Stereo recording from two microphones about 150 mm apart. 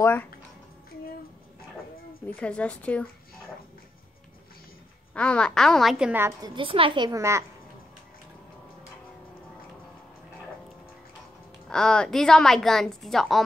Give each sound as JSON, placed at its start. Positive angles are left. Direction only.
{"t": 0.0, "sound": "a woman's voice", "side_deg": 15}
{"t": 2.2, "sound": "a woman's voice", "side_deg": 10}
{"t": 5.1, "sound": "a woman's voice", "side_deg": 5}
{"t": 6.5, "sound": "a woman's voice", "side_deg": -35}
{"t": 7.1, "sound": "a child's voice", "side_deg": -20}
{"t": 11.7, "sound": "a woman's voice", "side_deg": 5}